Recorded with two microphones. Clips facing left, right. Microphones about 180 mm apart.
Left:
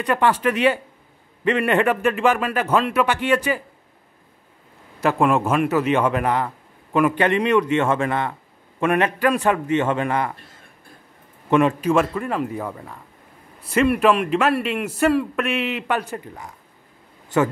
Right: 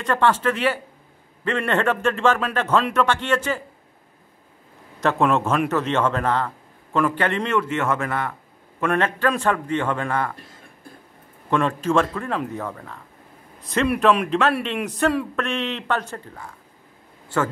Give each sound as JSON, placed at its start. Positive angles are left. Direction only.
{"t": 0.0, "sound": "a man's voice", "side_deg": 10}
{"t": 5.0, "sound": "a man's voice", "side_deg": 10}
{"t": 11.5, "sound": "a man's voice", "side_deg": 15}